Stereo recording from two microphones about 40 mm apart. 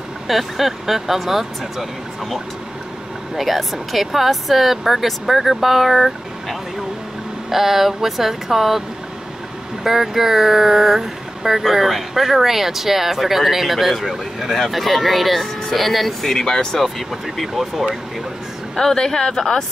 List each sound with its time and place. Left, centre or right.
0.3 s speech: centre
7.4 s speech: centre
9.8 s speech: centre
16.8 s speech: centre
18.8 s speech: centre